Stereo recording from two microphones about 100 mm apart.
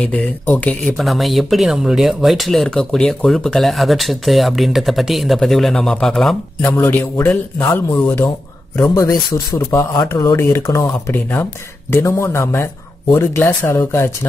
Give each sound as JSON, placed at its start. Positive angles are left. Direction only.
{"t": 0.0, "sound": "speech", "side_deg": 10}
{"t": 6.6, "sound": "a man's voice", "side_deg": 20}
{"t": 7.6, "sound": "speech", "side_deg": 30}